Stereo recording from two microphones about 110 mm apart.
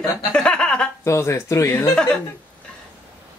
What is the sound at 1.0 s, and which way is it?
Speech, 25° left (ahead or behind).